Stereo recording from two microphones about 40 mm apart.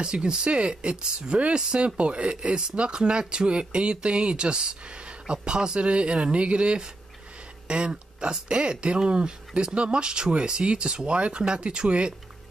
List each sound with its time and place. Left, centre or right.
0.0 s speech: right